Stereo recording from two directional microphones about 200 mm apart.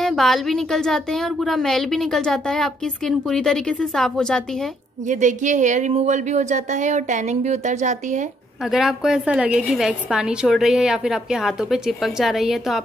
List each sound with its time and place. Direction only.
0.0 s speech: centre (ahead or behind)
5.0 s a woman's voice: 40° right (ahead or behind)
8.7 s speech: centre (ahead or behind)